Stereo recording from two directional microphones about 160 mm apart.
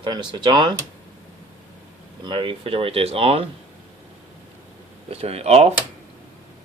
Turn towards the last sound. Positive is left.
turn(degrees=-40)  # may be behind; listen again after turning